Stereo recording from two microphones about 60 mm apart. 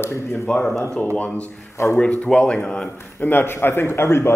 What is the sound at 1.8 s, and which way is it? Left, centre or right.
Speech, left.